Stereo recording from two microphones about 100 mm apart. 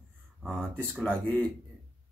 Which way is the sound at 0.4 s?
10° left (ahead or behind).